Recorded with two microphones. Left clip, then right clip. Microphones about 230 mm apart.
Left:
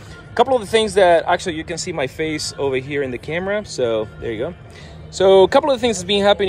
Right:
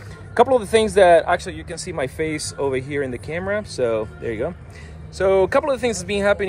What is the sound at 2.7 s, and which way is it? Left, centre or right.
Speech, centre.